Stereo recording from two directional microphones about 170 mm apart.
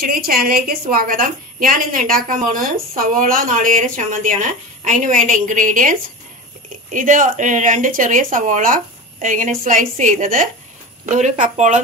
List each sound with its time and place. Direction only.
0.0 s a woman's voice: 60° right (ahead or behind); by 11.8 s 45° right (ahead or behind)